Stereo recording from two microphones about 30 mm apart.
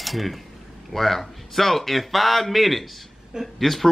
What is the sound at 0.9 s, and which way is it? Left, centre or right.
Speech, centre.